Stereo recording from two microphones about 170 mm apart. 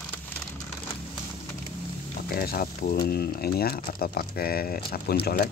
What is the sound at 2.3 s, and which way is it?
Speech, 60° left (ahead or behind).